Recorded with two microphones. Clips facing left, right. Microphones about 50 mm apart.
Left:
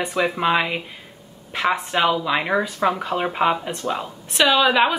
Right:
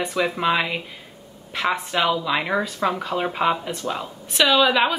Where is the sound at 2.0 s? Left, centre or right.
Left.